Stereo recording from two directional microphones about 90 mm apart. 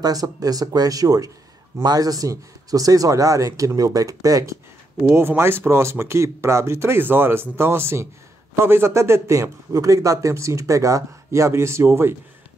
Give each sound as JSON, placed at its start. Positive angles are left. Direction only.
{"t": 0.0, "sound": "a man's voice", "side_deg": -45}
{"t": 5.0, "sound": "a man's voice", "side_deg": -25}